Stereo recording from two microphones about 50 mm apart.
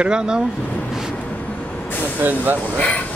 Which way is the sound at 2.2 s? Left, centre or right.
Right.